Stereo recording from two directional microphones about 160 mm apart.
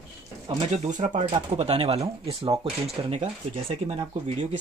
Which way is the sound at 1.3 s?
40° right (ahead or behind).